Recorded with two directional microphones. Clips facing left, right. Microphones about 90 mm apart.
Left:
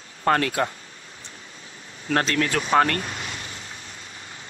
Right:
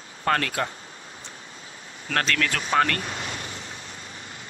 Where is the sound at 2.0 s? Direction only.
25° left (ahead or behind).